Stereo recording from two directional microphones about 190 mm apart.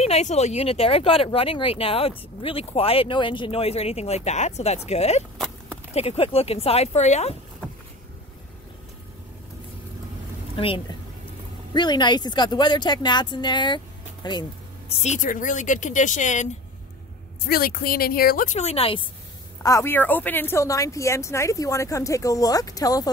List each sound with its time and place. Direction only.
0.0 s speech: 35° left (ahead or behind)
10.5 s speech: 30° left (ahead or behind)
14.9 s speech: 35° left (ahead or behind)
17.5 s a woman's voice: 50° left (ahead or behind); by 18.9 s 30° left (ahead or behind)
19.6 s a woman's voice: 15° left (ahead or behind)